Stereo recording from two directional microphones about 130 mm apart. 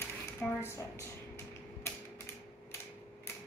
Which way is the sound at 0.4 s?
10° left (ahead or behind).